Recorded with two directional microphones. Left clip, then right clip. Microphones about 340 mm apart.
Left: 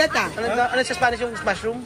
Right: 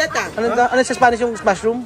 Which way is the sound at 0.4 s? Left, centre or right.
Centre.